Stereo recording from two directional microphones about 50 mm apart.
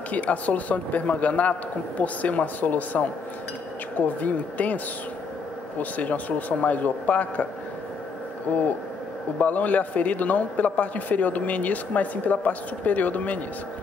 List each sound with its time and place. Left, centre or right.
0.1 s a man's voice: left
4.2 s a man's voice: left
5.8 s a man's voice: left
8.5 s a man's voice: left